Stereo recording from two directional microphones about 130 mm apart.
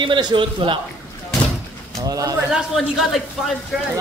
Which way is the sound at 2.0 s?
30° right (ahead or behind).